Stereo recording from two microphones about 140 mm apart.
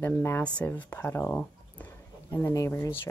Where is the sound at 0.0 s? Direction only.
15° left (ahead or behind).